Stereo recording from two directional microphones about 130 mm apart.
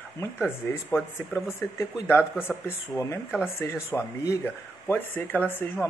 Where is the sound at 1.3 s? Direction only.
15° left (ahead or behind).